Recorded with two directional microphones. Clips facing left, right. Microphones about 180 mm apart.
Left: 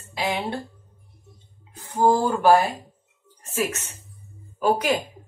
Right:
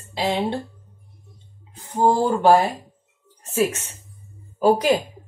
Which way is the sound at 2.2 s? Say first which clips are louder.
Right 2 dB; 25° right (ahead or behind).